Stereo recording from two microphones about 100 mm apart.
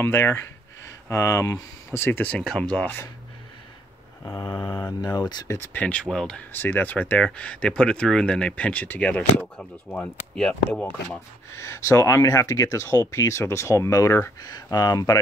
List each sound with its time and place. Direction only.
0.0 s speech: 25° left (ahead or behind)
5.0 s speech: 45° left (ahead or behind)
5.5 s speech: 20° left (ahead or behind)
6.5 s speech: 20° left (ahead or behind)
11.1 s speech: 25° left (ahead or behind)
14.4 s speech: 40° left (ahead or behind)